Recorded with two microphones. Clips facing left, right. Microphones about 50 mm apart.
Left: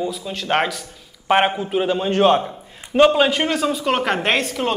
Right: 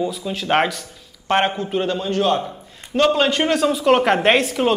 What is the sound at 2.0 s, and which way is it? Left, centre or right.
Speech, left.